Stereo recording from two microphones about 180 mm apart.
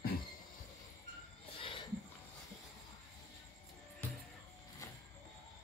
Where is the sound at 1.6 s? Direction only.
30° left (ahead or behind).